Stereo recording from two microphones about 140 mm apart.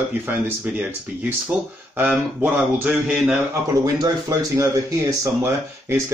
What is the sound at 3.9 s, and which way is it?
Speech, 25° right (ahead or behind).